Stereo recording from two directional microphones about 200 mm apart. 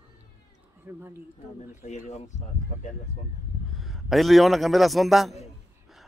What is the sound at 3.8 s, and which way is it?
A man's voice, centre (ahead or behind).